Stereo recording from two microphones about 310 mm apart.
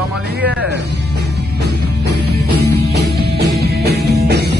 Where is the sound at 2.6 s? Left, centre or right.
Right.